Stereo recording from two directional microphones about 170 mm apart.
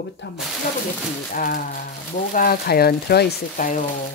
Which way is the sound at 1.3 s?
55° left (ahead or behind).